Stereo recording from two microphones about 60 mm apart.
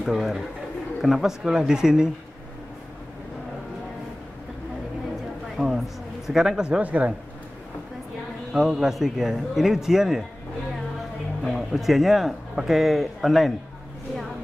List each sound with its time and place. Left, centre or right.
0.0 s a man's voice: centre
5.6 s speech: centre
6.8 s speech: right
8.5 s a man's voice: centre
11.4 s a man's voice: centre